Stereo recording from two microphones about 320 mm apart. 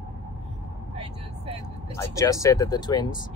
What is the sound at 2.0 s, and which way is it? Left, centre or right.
Speech, centre.